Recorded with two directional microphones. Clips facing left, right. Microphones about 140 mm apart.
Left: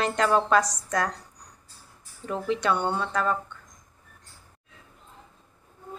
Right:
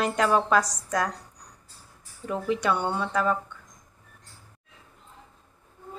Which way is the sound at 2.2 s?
5° right (ahead or behind).